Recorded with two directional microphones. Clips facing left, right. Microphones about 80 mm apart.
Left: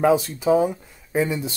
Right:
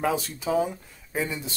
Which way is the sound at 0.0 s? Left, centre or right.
Left.